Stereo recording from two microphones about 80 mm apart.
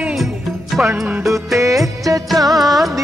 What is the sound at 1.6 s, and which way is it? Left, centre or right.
Music, right.